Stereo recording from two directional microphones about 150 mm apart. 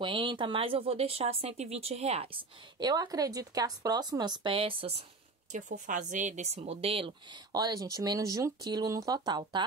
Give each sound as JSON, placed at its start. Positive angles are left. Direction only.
{"t": 0.0, "sound": "speech", "side_deg": -35}
{"t": 2.8, "sound": "speech", "side_deg": -25}
{"t": 5.5, "sound": "speech", "side_deg": -55}
{"t": 7.5, "sound": "speech", "side_deg": -25}